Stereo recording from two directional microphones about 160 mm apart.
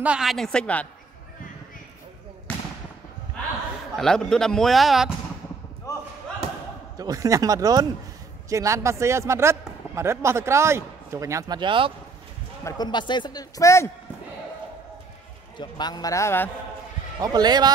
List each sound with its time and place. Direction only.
0.0 s a man's voice: 5° right (ahead or behind)
2.5 s fireworks: 10° left (ahead or behind)
4.0 s a man's voice: 5° left (ahead or behind)
5.9 s basketball bounce: 20° left (ahead or behind)
6.4 s basketball bounce: 45° right (ahead or behind)
7.0 s a man's voice: 20° right (ahead or behind)
12.6 s a man's voice: 25° left (ahead or behind)
15.5 s a man's voice: 25° left (ahead or behind)
17.2 s speech: 25° right (ahead or behind)